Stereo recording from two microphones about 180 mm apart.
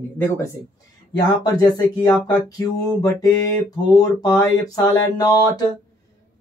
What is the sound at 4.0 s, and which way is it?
Speech, 20° left (ahead or behind).